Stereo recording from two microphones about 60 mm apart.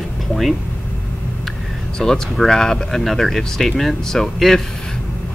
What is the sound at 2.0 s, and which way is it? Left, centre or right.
Speech, centre.